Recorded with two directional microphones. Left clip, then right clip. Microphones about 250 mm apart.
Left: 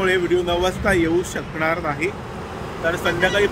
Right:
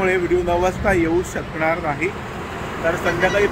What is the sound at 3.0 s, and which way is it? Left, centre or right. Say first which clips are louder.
Speech: even; centre.